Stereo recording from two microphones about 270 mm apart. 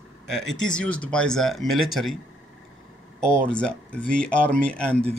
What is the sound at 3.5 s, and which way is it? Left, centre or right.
Speech, centre.